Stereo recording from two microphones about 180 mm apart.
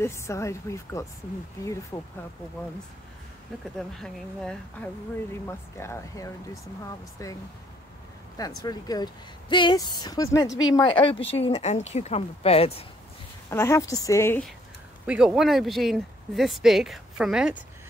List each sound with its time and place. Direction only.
0.0 s speech: 15° left (ahead or behind)
4.0 s speech: 5° left (ahead or behind)
5.8 s speech: 15° left (ahead or behind)
8.4 s speech: 20° left (ahead or behind)
13.5 s speech: 15° left (ahead or behind)
15.0 s speech: 5° right (ahead or behind)